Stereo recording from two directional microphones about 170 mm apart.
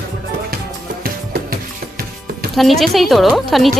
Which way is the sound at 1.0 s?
60° right (ahead or behind).